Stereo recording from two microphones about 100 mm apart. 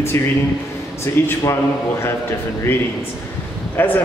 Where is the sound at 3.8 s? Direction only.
20° left (ahead or behind).